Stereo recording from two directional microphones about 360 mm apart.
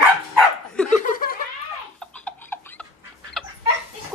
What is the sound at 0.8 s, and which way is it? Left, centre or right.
Laughter, left.